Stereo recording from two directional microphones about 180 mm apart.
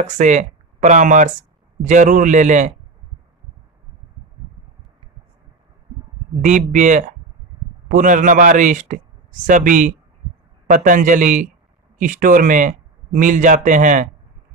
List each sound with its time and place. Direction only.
0.0 s speech: 40° right (ahead or behind)
6.4 s speech: 45° right (ahead or behind)